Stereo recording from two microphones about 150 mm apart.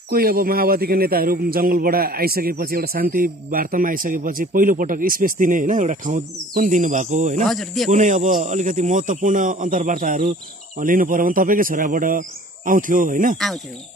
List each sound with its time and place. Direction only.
0.1 s a man's voice: 85° right; by 7.4 s 55° right (ahead or behind)
7.4 s speech: centre (ahead or behind)
7.9 s speech: 55° right (ahead or behind)